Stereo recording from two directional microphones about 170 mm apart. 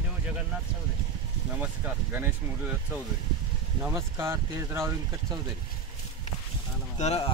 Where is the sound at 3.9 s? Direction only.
15° right (ahead or behind).